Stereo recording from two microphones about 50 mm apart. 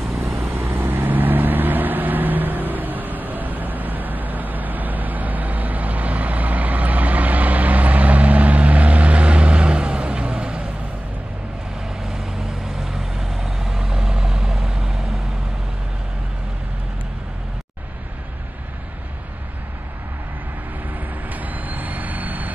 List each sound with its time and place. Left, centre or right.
0.2 s vehicle: right
12.1 s vehicle: centre
21.3 s vehicle: right